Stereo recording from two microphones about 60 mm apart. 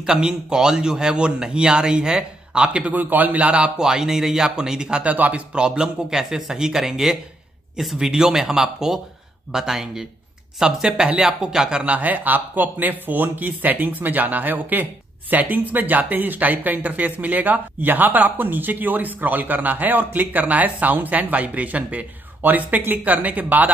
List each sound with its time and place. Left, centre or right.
0.0 s a man's voice: centre
5.0 s a man's voice: right
11.8 s speech: right